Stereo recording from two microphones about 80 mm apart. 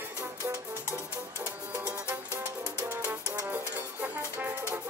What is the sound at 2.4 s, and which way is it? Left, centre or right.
Music, right.